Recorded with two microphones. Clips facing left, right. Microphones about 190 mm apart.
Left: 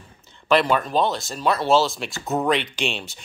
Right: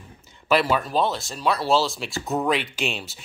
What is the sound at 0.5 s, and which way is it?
Speech, 5° right (ahead or behind).